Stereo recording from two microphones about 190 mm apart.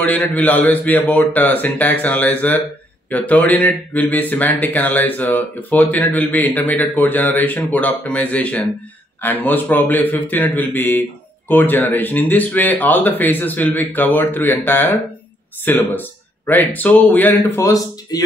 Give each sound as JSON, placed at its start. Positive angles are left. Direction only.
{"t": 0.0, "sound": "a man's voice", "side_deg": 10}